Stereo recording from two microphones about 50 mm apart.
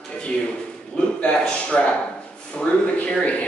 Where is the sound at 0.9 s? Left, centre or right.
Centre.